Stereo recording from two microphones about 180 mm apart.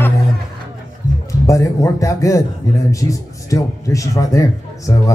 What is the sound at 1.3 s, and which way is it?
A man's voice, 20° left (ahead or behind).